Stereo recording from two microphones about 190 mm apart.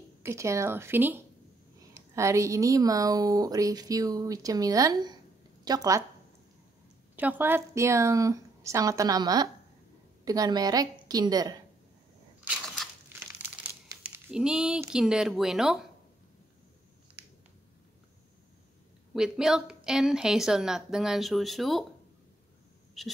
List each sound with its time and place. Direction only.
0.2 s a woman's voice: 15° right (ahead or behind)
7.2 s a woman's voice: 10° right (ahead or behind)
12.4 s crunch: centre (ahead or behind)
13.3 s crumpling: 10° right (ahead or behind)
19.1 s a woman's voice: 5° right (ahead or behind)
23.0 s a woman's voice: centre (ahead or behind)